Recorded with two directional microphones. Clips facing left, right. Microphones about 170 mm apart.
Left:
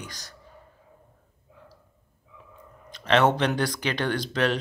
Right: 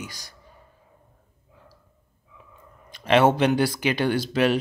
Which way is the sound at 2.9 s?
10° right (ahead or behind).